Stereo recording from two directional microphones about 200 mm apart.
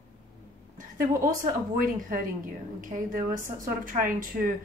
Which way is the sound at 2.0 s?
40° right (ahead or behind).